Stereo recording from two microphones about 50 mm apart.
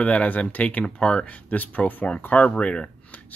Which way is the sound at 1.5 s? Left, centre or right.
Left.